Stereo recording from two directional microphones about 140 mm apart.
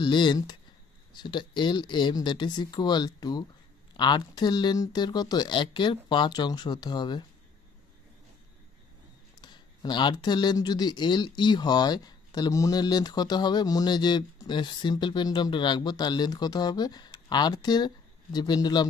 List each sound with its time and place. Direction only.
0.0 s speech: 35° left (ahead or behind)
9.4 s speech: 30° left (ahead or behind)